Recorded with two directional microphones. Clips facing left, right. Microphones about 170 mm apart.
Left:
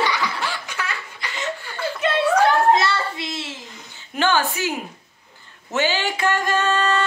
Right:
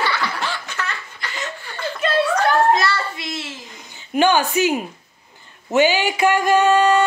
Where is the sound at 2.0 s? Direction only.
20° left (ahead or behind).